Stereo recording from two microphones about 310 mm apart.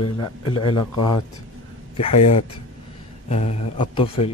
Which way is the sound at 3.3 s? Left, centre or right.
Left.